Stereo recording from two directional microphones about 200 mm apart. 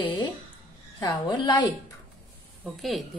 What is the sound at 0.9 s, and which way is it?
Speech, 20° left (ahead or behind).